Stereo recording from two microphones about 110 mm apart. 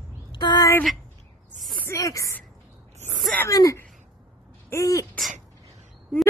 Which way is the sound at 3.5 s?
30° left (ahead or behind).